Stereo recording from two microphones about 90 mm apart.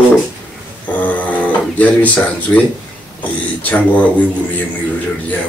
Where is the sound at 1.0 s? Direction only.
15° left (ahead or behind).